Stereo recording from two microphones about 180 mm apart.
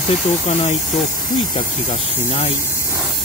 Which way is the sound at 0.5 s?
40° left (ahead or behind).